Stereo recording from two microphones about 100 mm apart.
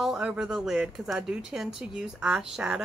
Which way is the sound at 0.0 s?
5° right (ahead or behind).